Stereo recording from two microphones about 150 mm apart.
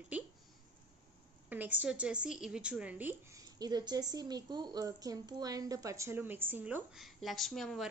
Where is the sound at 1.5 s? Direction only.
10° right (ahead or behind).